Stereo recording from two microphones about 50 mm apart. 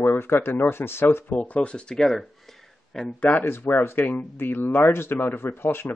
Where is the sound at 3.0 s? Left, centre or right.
Left.